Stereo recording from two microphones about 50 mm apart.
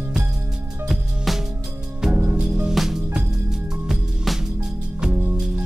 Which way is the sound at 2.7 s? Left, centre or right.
Centre.